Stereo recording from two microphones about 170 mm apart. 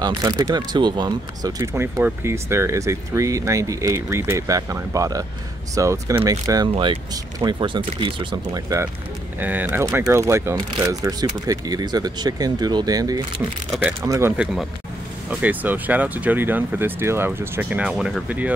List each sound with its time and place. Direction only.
0.0 s speech: 25° right (ahead or behind)
6.7 s speech: 35° right (ahead or behind)
14.3 s speech: 5° right (ahead or behind)